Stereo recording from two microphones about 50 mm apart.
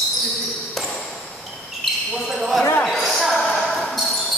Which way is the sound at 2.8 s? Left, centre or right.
Centre.